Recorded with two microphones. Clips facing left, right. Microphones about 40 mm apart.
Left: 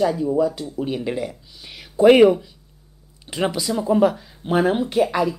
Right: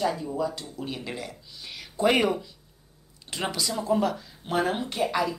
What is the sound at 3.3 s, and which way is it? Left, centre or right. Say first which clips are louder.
Speech: left 7 dB; centre.